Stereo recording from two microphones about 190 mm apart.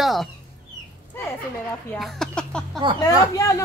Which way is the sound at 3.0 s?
15° left (ahead or behind).